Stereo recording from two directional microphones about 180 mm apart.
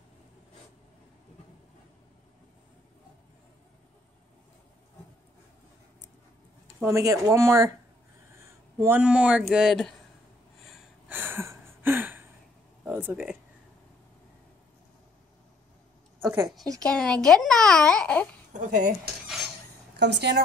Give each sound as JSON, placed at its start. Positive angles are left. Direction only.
{"t": 6.8, "sound": "speech", "side_deg": -15}
{"t": 8.8, "sound": "a child's voice", "side_deg": -5}
{"t": 10.6, "sound": "a sound", "side_deg": -5}
{"t": 16.2, "sound": "speech", "side_deg": -15}
{"t": 16.8, "sound": "a child's voice", "side_deg": 5}
{"t": 18.5, "sound": "speech", "side_deg": -45}
{"t": 19.2, "sound": "a sound", "side_deg": 0}
{"t": 20.0, "sound": "a woman's voice", "side_deg": -70}